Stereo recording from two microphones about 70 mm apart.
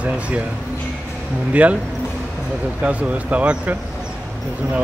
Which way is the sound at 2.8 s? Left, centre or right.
Right.